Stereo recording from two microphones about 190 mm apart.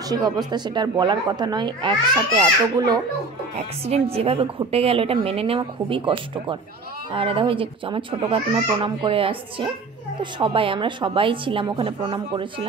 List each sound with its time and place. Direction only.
0.1 s speech: 20° right (ahead or behind)
3.5 s a woman's voice: 30° right (ahead or behind)